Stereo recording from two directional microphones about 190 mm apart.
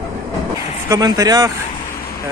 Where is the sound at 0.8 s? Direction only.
20° right (ahead or behind).